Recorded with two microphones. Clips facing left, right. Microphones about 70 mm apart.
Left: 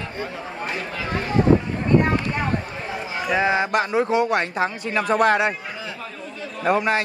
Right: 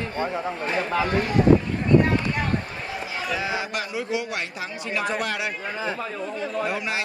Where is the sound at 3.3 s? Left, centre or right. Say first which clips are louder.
Left 9 dB; left.